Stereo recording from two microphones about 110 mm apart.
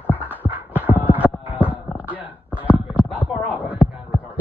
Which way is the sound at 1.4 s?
15° right (ahead or behind).